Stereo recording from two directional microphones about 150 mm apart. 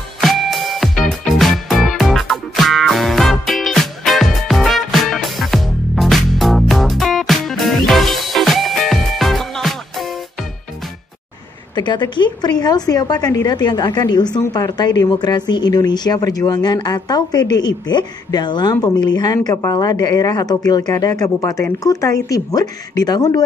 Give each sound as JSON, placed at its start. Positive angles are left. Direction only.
{"t": 0.2, "sound": "music", "side_deg": 0}
{"t": 11.7, "sound": "a woman's voice", "side_deg": 30}